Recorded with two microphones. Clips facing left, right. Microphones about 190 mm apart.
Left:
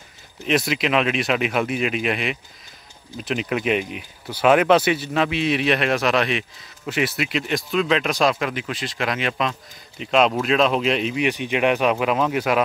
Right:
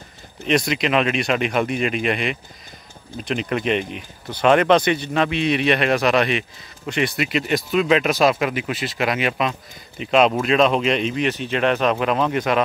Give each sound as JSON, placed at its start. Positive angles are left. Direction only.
{"t": 0.5, "sound": "speech", "side_deg": 5}